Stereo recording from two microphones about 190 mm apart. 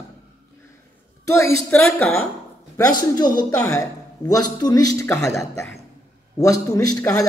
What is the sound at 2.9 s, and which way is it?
A woman's voice, 20° left (ahead or behind).